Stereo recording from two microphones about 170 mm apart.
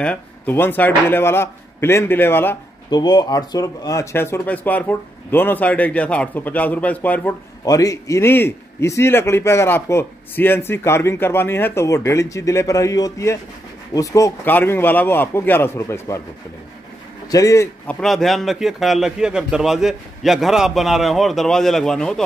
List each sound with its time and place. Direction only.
0.0 s a man's voice: 10° left (ahead or behind)
2.9 s a man's voice: 25° left (ahead or behind); by 7.3 s 10° left (ahead or behind)
7.6 s a man's voice: 20° left (ahead or behind)
17.3 s speech: 20° left (ahead or behind)
17.8 s a man's voice: centre (ahead or behind)